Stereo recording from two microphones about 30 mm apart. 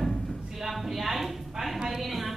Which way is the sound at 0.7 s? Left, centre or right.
Centre.